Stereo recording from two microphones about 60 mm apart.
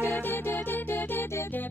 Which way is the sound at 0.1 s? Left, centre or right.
Left.